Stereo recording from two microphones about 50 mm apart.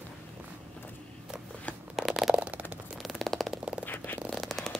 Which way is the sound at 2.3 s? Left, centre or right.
Right.